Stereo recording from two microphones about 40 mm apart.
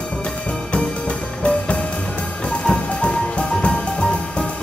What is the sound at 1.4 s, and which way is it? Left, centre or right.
Music, left.